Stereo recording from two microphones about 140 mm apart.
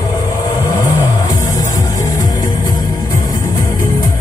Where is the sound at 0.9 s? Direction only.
30° left (ahead or behind).